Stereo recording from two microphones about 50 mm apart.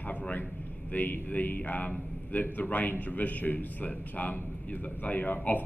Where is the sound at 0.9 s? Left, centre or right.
Left.